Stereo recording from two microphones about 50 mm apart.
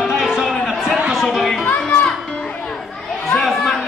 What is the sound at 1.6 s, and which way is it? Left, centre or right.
Music, left.